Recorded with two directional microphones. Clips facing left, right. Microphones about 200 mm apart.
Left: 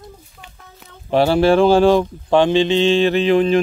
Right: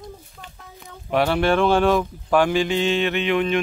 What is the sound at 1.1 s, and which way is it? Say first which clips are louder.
Speech: left 6 dB; 30° left (ahead or behind).